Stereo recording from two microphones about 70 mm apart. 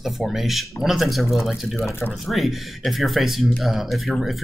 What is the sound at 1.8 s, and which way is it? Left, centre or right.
Speech, left.